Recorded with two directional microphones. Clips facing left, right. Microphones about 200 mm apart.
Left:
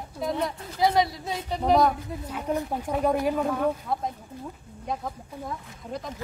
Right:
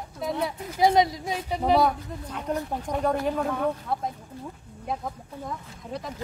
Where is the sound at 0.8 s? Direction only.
20° right (ahead or behind).